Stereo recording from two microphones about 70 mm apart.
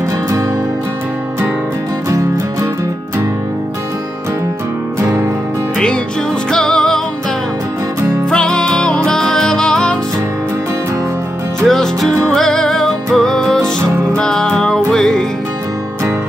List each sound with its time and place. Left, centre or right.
5.0 s music: right
6.5 s music: centre
8.3 s music: centre
11.6 s music: centre